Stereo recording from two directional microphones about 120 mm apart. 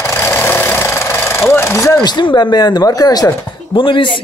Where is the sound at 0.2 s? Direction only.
15° left (ahead or behind).